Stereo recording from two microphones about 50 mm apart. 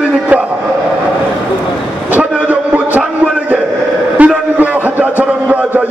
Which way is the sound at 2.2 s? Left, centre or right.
Right.